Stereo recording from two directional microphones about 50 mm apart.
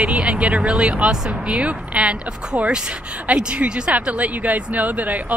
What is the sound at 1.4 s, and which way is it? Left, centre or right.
Speech, right.